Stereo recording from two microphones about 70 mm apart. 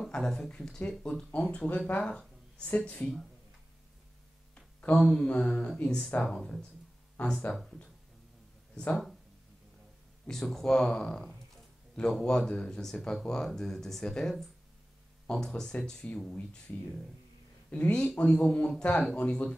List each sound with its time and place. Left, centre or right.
0.1 s speech: centre
4.6 s speech: centre
10.2 s speech: centre